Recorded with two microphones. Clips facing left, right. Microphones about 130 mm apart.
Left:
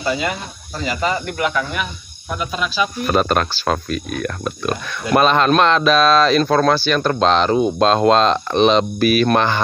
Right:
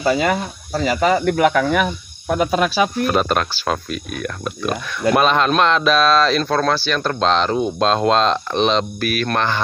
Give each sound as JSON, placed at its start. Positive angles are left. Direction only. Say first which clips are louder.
{"t": 0.1, "sound": "speech", "louder": "right 2 dB", "side_deg": -55}
{"t": 3.1, "sound": "speech", "louder": "left 1 dB", "side_deg": 0}
{"t": 9.0, "sound": "cricket", "louder": "left 5 dB", "side_deg": 15}